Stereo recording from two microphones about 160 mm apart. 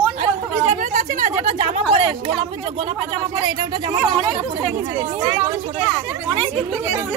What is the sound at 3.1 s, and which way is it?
Speech, 30° right (ahead or behind).